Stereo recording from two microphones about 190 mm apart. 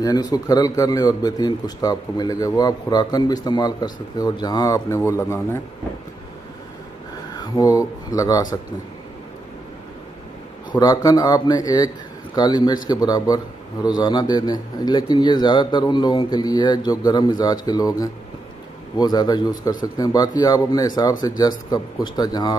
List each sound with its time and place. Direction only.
0.0 s a man's voice: 20° left (ahead or behind)
7.3 s speech: 20° left (ahead or behind)
10.8 s a man's voice: 20° left (ahead or behind)